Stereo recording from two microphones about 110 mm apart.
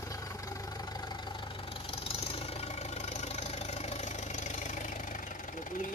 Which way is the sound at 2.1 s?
60° left (ahead or behind).